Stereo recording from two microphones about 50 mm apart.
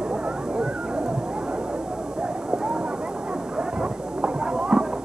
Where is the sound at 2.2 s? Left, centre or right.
Centre.